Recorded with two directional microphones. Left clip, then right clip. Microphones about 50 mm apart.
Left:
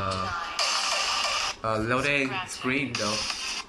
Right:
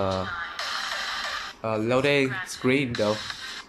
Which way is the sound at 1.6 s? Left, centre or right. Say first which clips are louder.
Right 5 dB; right.